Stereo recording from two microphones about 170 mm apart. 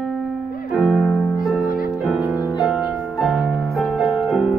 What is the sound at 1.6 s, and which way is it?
Music, 60° left (ahead or behind).